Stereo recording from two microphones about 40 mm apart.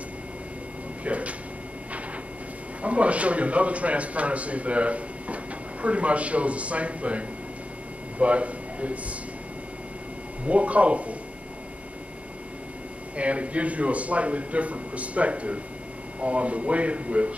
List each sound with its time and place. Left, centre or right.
1.0 s speech: right
2.8 s a man's voice: right
10.4 s speech: right
13.1 s speech: right